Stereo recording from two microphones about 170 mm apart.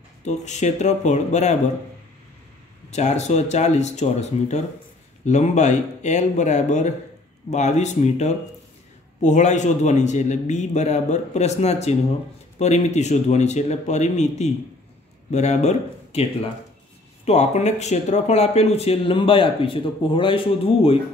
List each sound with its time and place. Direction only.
0.2 s a man's voice: 45° left (ahead or behind)
2.9 s a man's voice: 40° left (ahead or behind)